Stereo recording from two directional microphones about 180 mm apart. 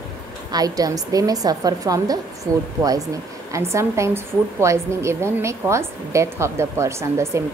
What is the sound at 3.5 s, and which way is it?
A woman's voice, 15° right (ahead or behind).